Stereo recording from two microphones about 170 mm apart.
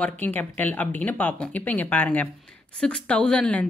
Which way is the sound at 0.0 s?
10° left (ahead or behind).